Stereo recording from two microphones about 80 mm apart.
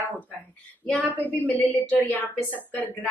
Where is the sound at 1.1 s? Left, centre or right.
Left.